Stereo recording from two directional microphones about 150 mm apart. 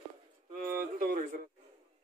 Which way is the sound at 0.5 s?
80° right.